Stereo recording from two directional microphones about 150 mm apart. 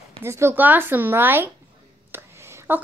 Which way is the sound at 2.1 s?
15° right (ahead or behind).